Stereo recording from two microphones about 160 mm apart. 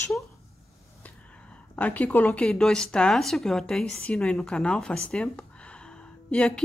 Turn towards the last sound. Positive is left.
turn(degrees=10)  # may be behind; listen again after turning